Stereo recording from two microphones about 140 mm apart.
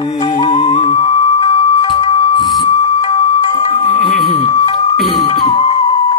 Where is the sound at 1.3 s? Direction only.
30° left (ahead or behind).